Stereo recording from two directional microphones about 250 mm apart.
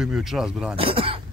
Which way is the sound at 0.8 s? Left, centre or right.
Right.